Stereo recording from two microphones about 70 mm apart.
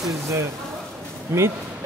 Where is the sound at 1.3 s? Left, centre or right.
Right.